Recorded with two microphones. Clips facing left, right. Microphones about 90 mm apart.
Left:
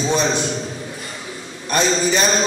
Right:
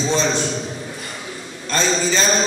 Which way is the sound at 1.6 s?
15° left (ahead or behind).